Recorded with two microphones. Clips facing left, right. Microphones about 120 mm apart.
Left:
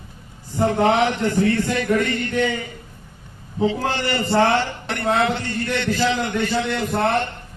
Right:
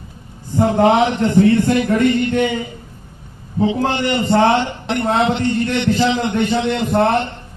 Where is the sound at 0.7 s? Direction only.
20° right (ahead or behind).